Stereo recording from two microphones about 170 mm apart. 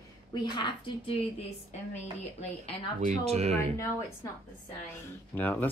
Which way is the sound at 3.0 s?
40° right (ahead or behind).